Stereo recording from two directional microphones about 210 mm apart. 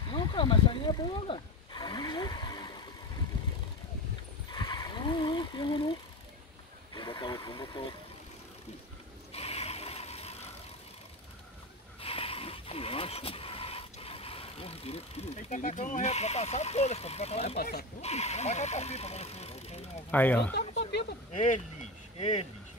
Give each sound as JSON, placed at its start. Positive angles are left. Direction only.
{"t": 0.1, "sound": "roaring cats", "side_deg": 20}
{"t": 4.5, "sound": "a sound", "side_deg": 20}
{"t": 6.9, "sound": "speech", "side_deg": 20}
{"t": 9.3, "sound": "mechanisms", "side_deg": 30}
{"t": 12.0, "sound": "vehicle", "side_deg": 25}
{"t": 17.6, "sound": "speech", "side_deg": 50}
{"t": 18.0, "sound": "speech", "side_deg": 30}
{"t": 20.1, "sound": "speech", "side_deg": 10}
{"t": 21.3, "sound": "speech", "side_deg": 35}